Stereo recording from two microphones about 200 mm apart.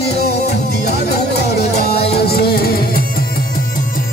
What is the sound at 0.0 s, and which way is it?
Music, 55° left (ahead or behind).